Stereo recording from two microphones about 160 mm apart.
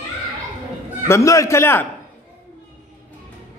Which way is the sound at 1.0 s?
20° left (ahead or behind).